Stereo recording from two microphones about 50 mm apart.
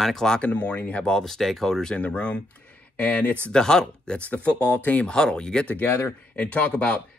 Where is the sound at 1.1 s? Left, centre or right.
Centre; by 3.3 s left.